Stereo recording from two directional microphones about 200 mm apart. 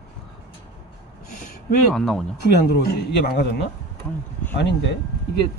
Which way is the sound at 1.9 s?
Centre (ahead or behind).